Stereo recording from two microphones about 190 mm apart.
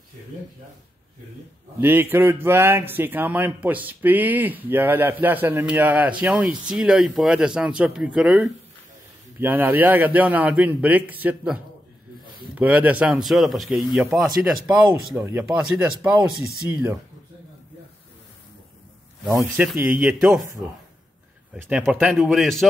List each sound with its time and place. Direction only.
1.8 s speech: 10° right (ahead or behind)
19.5 s speech: 5° right (ahead or behind)
21.6 s speech: centre (ahead or behind)